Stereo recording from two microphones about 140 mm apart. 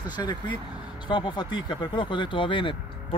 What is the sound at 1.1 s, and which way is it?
Speech, 30° left (ahead or behind).